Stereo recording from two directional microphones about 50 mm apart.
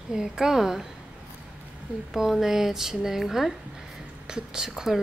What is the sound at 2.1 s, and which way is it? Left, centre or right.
Speech, centre.